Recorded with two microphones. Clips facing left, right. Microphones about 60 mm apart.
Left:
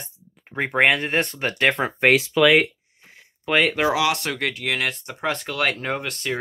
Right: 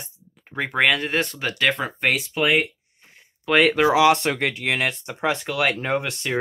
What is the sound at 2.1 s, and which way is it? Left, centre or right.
Speech, left.